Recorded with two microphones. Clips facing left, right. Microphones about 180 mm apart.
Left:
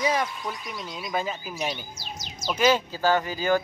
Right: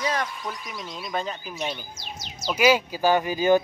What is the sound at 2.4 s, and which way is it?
Speech, 10° right (ahead or behind).